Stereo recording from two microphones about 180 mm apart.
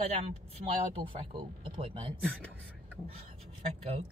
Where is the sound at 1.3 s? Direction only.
30° right (ahead or behind).